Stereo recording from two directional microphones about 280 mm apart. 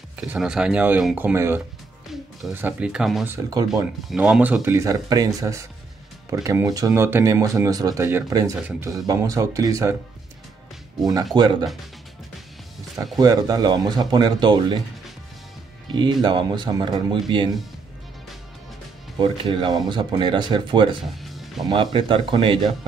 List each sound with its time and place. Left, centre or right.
0.1 s speech: centre
11.3 s speech: centre
12.9 s speech: centre
13.2 s speech: centre
15.9 s speech: centre
19.1 s speech: centre
21.0 s music: centre
21.9 s speech: centre